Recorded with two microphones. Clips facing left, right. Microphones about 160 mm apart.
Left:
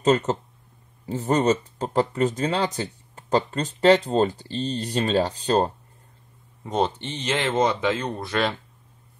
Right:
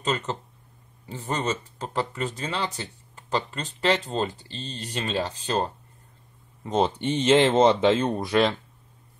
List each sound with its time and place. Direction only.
0.0 s speech: 40° left (ahead or behind)
6.6 s speech: centre (ahead or behind)
7.0 s speech: 20° right (ahead or behind)